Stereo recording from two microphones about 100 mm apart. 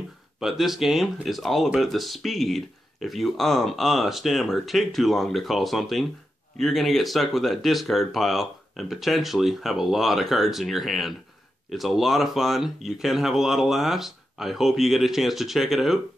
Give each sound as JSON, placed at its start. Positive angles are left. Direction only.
{"t": 0.4, "sound": "speech", "side_deg": -5}